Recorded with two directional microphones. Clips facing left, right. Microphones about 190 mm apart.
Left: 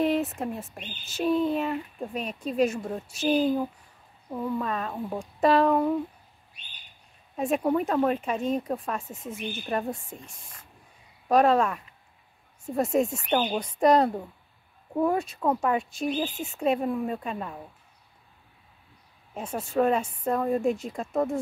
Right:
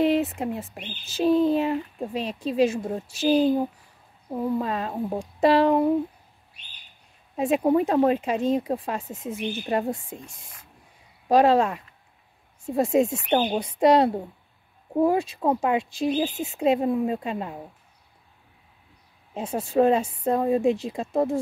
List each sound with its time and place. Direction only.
0.4 s a woman's voice: 15° right (ahead or behind)
1.0 s speech: 35° right (ahead or behind)
7.3 s speech: 20° right (ahead or behind)
9.3 s a woman's voice: 20° right (ahead or behind)
11.2 s speech: 30° right (ahead or behind)
13.0 s a woman's voice: 25° right (ahead or behind)
15.0 s speech: 30° right (ahead or behind)
19.3 s speech: 30° right (ahead or behind)
20.4 s a woman's voice: 15° right (ahead or behind)
20.9 s speech: 25° right (ahead or behind)